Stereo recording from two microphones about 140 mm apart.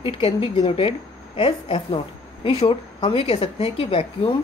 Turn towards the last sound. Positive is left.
turn(degrees=40)  # may be behind; listen again after turning